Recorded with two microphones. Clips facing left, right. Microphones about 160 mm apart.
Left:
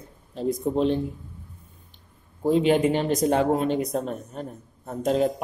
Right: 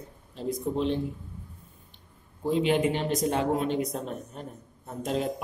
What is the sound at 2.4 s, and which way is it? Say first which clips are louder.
Speech: left 5 dB; 40° left (ahead or behind).